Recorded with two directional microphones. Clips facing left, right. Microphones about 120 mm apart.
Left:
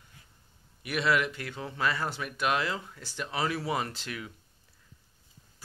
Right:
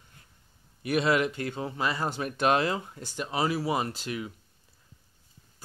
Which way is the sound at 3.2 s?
15° right (ahead or behind).